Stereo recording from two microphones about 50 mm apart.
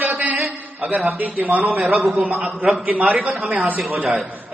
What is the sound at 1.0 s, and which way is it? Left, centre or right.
Speech, right.